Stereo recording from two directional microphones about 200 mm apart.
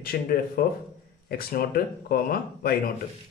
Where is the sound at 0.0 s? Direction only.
50° left (ahead or behind).